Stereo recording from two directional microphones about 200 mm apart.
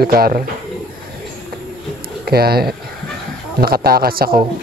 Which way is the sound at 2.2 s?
50° right (ahead or behind).